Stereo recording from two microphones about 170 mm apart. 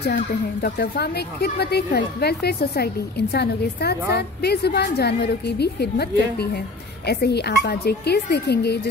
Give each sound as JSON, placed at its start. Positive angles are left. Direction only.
{"t": 0.1, "sound": "a woman's voice", "side_deg": 60}